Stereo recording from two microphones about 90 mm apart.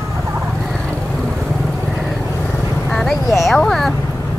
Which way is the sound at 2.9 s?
5° left (ahead or behind).